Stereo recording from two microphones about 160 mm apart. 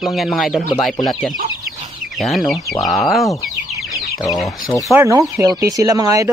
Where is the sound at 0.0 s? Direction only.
Centre (ahead or behind).